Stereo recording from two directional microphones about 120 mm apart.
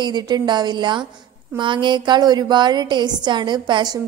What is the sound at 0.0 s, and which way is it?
A woman's voice, 35° right (ahead or behind).